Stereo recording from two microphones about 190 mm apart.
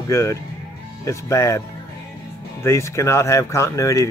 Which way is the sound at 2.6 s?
15° left (ahead or behind).